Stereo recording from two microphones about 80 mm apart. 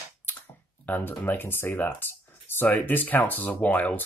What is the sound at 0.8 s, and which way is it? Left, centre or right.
Speech, left.